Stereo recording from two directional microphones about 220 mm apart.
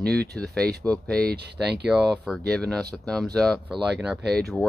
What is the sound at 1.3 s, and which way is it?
Speech, 50° right (ahead or behind).